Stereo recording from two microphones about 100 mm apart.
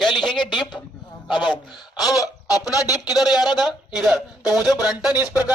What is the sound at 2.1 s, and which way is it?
Speech, 35° left (ahead or behind).